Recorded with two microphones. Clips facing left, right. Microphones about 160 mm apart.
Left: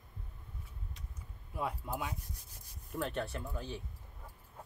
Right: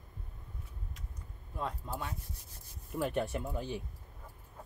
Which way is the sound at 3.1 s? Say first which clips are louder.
Right 4 dB; 15° right (ahead or behind).